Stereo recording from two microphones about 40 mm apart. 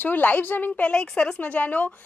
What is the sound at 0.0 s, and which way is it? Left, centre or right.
Speech, left.